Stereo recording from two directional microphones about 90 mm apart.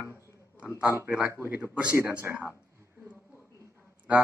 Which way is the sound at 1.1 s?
15° right (ahead or behind).